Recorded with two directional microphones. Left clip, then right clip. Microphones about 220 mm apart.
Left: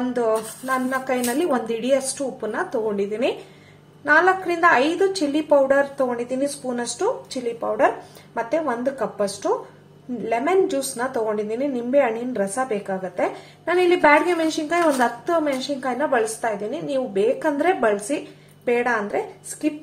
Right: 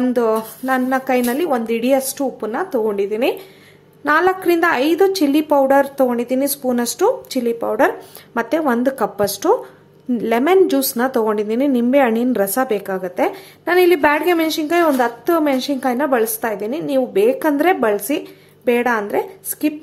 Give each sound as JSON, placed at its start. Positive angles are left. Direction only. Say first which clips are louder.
{"t": 0.1, "sound": "a woman's voice", "louder": "right 4 dB", "side_deg": -35}